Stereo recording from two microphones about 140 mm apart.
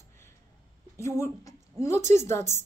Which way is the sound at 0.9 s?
20° left (ahead or behind).